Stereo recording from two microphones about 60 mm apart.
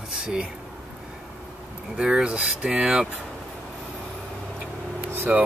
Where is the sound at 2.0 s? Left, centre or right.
Centre.